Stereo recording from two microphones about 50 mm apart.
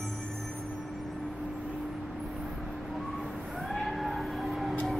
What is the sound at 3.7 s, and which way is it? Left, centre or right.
Vehicle, centre.